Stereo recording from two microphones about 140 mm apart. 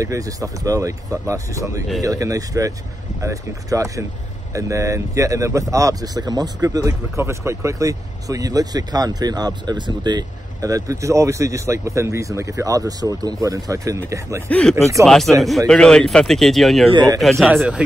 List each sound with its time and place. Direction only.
0.0 s speech: 25° right (ahead or behind)
14.5 s speech: 5° left (ahead or behind)